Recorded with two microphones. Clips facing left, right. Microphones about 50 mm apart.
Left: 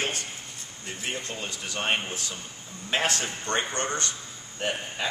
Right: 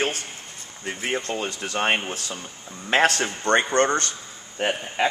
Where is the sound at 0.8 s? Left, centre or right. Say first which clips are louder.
Right 7 dB; right.